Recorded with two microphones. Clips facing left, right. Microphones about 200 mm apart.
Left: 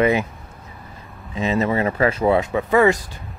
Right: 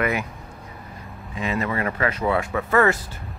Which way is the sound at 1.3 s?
25° left (ahead or behind).